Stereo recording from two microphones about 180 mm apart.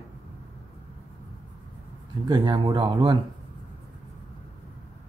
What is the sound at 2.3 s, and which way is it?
Speech, 25° right (ahead or behind).